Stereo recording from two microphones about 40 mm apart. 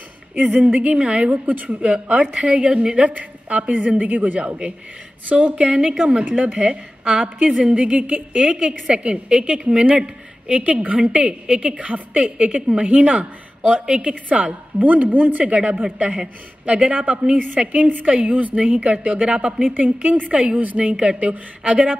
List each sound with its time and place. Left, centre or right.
0.4 s a woman's voice: right
1.3 s a woman's voice: right
1.8 s a woman's voice: right
3.1 s a woman's voice: right
4.4 s a woman's voice: right
15.4 s a woman's voice: right
19.7 s a woman's voice: right